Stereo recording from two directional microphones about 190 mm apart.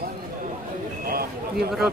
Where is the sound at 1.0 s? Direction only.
50° right (ahead or behind).